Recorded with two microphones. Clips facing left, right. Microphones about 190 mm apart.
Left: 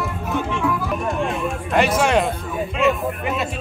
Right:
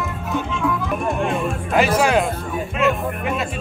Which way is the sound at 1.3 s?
Centre (ahead or behind).